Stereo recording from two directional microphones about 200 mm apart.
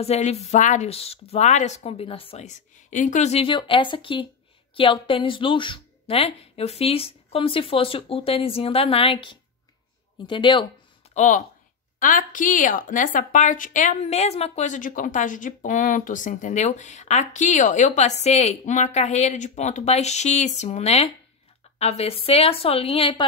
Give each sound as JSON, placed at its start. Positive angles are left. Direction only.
{"t": 0.0, "sound": "a woman's voice", "side_deg": 30}
{"t": 11.1, "sound": "a woman's voice", "side_deg": 40}